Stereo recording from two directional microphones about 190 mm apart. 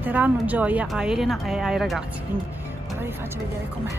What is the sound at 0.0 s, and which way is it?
Speech, 10° right (ahead or behind).